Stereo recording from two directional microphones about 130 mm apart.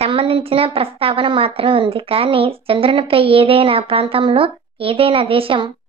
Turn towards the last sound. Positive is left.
turn(degrees=-45)  # may be behind; listen again after turning